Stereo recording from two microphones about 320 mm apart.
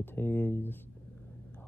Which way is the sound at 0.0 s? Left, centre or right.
Centre.